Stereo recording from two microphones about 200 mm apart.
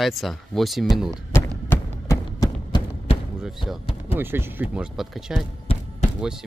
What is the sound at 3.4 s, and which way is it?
Speech, centre (ahead or behind).